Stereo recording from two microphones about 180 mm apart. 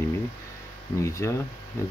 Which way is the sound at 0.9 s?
15° left (ahead or behind).